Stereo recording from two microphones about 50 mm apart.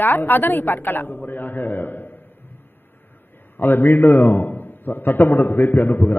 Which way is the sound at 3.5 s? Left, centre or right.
Left.